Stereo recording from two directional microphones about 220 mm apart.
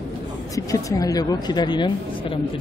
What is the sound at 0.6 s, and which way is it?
Speech, 15° left (ahead or behind).